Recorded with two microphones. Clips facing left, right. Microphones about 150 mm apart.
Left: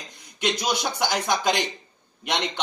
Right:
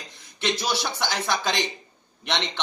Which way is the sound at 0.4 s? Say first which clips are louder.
Left 1 dB; 15° left (ahead or behind).